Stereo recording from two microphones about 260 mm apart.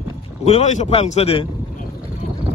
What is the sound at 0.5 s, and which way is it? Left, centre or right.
Speech, left.